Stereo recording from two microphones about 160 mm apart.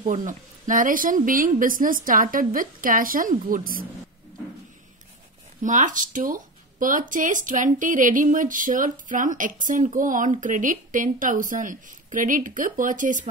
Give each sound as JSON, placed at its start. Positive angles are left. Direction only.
{"t": 0.0, "sound": "speech", "side_deg": -50}
{"t": 5.6, "sound": "speech", "side_deg": -50}